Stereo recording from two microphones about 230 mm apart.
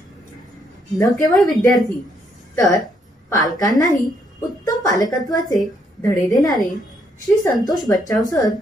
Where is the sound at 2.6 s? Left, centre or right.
Centre.